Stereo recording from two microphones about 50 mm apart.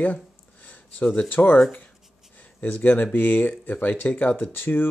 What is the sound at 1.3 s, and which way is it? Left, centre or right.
Speech, left.